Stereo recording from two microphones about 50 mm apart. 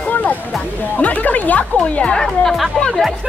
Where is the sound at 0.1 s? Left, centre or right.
Left.